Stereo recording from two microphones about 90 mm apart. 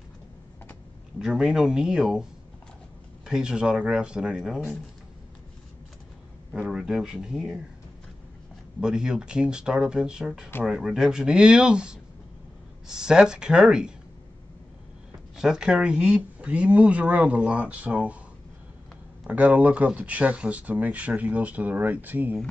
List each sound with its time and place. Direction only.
1.2 s speech: 5° right (ahead or behind)
3.3 s speech: 10° right (ahead or behind)
6.5 s speech: 5° right (ahead or behind)
8.8 s speech: 5° right (ahead or behind)
15.3 s speech: 5° right (ahead or behind)
19.2 s speech: 15° right (ahead or behind)